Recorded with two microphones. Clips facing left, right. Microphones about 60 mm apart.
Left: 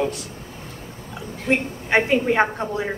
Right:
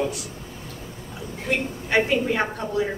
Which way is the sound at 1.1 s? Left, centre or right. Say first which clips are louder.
Left 4 dB; left.